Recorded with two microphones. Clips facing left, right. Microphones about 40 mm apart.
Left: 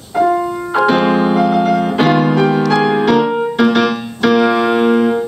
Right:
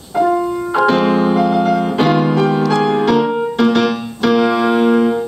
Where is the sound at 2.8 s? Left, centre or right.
Centre.